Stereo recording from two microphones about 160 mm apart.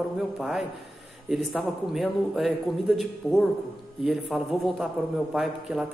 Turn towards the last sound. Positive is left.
turn(degrees=0)  # may be behind; listen again after turning